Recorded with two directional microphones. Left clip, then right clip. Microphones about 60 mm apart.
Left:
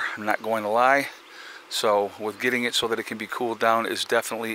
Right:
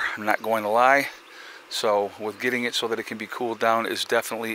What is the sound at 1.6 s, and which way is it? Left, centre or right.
Speech, left.